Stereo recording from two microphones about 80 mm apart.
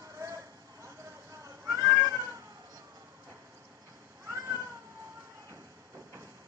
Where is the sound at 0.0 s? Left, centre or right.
Right.